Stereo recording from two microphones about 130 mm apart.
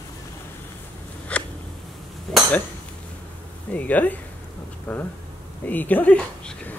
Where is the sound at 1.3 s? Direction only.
10° left (ahead or behind).